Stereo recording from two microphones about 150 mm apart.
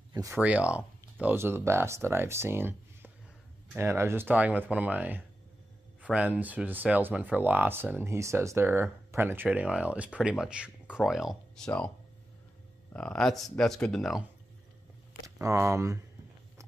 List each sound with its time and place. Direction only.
0.1 s speech: 20° right (ahead or behind)
0.4 s speech: 10° right (ahead or behind)
12.9 s speech: 5° left (ahead or behind)
15.2 s speech: 20° right (ahead or behind)